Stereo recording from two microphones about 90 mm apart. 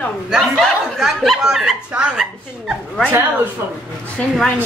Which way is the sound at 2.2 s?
5° right (ahead or behind).